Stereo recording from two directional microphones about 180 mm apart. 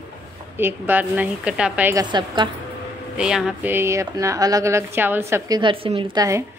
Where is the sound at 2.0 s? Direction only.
25° right (ahead or behind).